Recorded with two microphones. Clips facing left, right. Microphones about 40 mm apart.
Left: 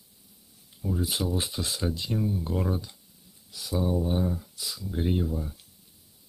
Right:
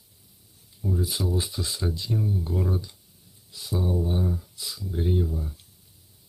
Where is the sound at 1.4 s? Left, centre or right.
Left.